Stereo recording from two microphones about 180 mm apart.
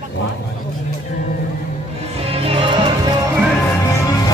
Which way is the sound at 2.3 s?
30° right (ahead or behind).